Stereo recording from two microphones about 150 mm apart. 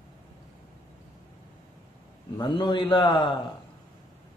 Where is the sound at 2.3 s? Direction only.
35° left (ahead or behind).